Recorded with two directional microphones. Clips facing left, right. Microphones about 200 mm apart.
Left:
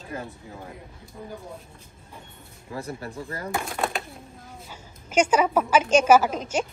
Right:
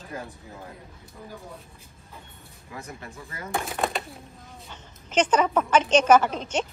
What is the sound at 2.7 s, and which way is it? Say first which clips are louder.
Speech: left 6 dB; 35° left (ahead or behind).